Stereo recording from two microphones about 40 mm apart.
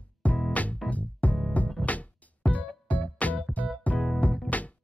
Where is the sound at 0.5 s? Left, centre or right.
Left.